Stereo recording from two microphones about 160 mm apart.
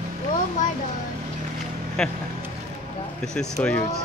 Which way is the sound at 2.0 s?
5° left (ahead or behind).